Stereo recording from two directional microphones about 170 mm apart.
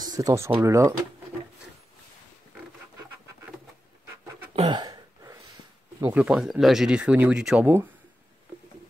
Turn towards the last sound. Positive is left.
turn(degrees=-5)  # may be behind; listen again after turning